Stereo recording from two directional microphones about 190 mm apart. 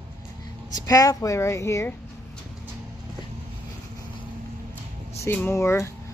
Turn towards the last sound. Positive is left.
turn(degrees=15)  # may be behind; listen again after turning